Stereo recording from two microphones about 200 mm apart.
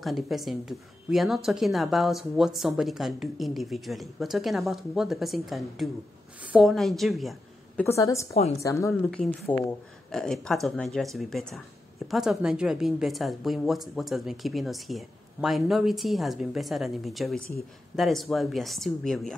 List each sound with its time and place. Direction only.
0.0 s a woman's voice: centre (ahead or behind)
7.8 s a woman's voice: 15° left (ahead or behind)
8.3 s a woman's voice: 30° left (ahead or behind)
8.5 s speech: 15° left (ahead or behind)